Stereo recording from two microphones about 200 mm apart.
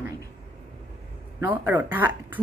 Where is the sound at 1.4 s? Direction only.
10° right (ahead or behind).